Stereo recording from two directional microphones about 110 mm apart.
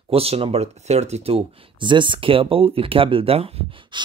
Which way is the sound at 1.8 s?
45° right (ahead or behind).